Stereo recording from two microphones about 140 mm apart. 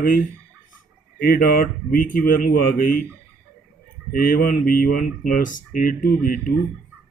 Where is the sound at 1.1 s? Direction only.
90° left.